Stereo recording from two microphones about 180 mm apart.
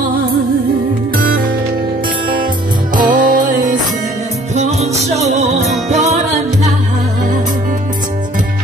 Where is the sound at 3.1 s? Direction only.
45° right (ahead or behind).